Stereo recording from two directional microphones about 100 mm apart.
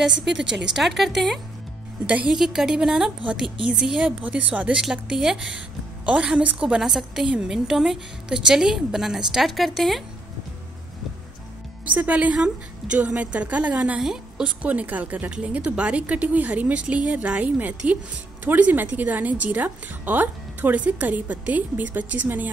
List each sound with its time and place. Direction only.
0.7 s a woman's voice: centre (ahead or behind)
2.0 s a woman's voice: 15° right (ahead or behind); by 10.0 s centre (ahead or behind)
11.8 s a woman's voice: 15° right (ahead or behind)